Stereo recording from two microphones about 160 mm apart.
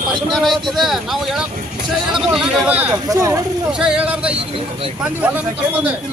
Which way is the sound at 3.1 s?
20° right (ahead or behind).